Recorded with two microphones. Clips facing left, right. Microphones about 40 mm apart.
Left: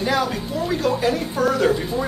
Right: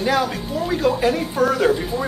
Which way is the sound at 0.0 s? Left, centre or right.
Centre.